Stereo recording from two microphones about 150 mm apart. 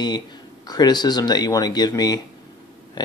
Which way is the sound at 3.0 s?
30° left (ahead or behind).